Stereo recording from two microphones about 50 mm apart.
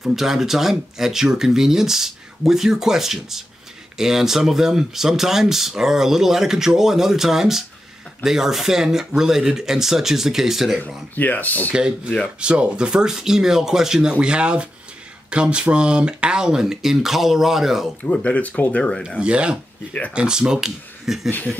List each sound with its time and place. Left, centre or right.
0.0 s speech: centre
11.1 s speech: left
11.7 s speech: centre
14.1 s speech: right
18.0 s speech: left
19.0 s speech: centre
21.3 s speech: left